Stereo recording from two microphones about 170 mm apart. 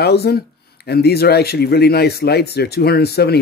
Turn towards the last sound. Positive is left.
turn(degrees=70)  # may be behind; listen again after turning